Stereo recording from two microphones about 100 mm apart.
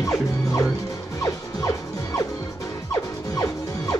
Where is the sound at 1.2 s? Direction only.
35° left (ahead or behind).